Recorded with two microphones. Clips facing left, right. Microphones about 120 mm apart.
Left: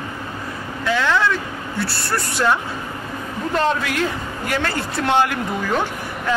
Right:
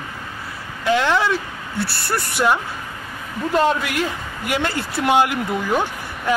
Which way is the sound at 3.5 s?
5° right (ahead or behind).